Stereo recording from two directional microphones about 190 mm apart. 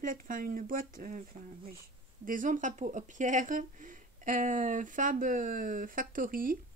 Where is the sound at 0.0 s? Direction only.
45° right (ahead or behind).